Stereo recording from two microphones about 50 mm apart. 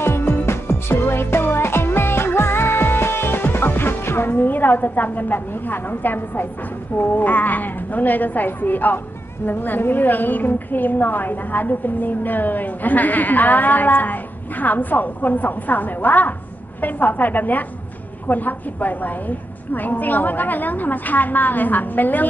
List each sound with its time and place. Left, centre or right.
0.0 s music: left
7.0 s a woman's voice: left